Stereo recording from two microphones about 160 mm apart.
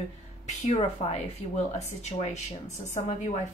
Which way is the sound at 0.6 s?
45° left (ahead or behind).